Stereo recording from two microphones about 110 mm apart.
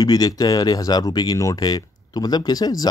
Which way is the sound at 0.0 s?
35° left (ahead or behind).